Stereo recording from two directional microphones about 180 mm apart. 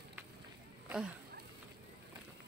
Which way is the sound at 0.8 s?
5° right (ahead or behind).